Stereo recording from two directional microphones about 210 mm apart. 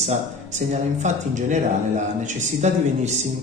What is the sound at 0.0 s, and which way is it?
Speech, 35° right (ahead or behind).